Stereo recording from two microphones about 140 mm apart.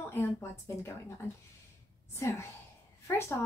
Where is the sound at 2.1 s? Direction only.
20° left (ahead or behind).